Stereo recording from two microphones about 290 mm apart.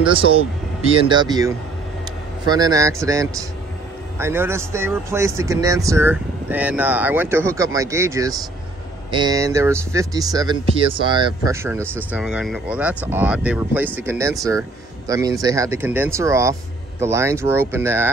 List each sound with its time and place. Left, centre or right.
0.8 s speech: centre